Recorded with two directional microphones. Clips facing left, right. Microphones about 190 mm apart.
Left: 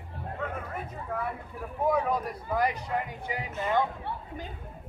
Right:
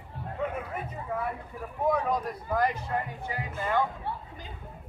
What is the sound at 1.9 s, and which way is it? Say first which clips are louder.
Speech: left 1 dB; 5° left (ahead or behind).